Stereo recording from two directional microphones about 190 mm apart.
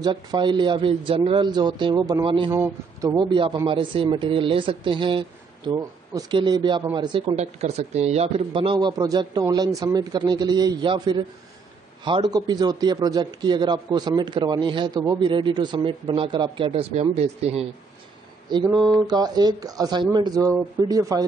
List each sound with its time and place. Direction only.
0.0 s a man's voice: 25° right (ahead or behind)
2.5 s a man's voice: 15° right (ahead or behind)
7.3 s a man's voice: 35° right (ahead or behind)
18.5 s a man's voice: 25° right (ahead or behind)